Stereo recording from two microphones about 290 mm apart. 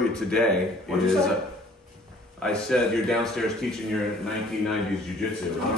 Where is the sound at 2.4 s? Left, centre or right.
Centre.